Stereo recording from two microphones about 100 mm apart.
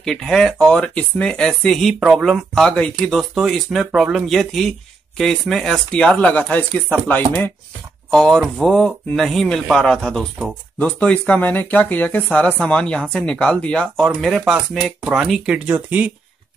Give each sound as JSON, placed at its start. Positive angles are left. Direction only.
{"t": 0.0, "sound": "speech", "side_deg": 5}
{"t": 8.1, "sound": "speech", "side_deg": 5}